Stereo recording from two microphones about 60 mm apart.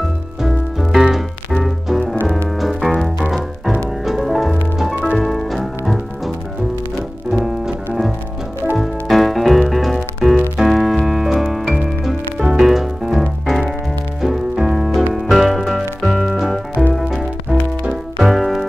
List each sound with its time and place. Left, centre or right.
0.4 s music: centre
7.3 s music: centre
10.6 s keyboard: centre
11.4 s music: centre
12.4 s music: centre
12.6 s music: centre
18.2 s music: centre